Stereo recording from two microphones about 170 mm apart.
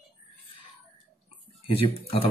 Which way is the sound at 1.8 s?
35° left (ahead or behind).